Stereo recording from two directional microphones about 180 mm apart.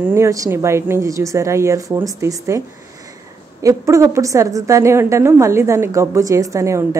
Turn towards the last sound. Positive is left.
turn(degrees=-15)  # may be behind; listen again after turning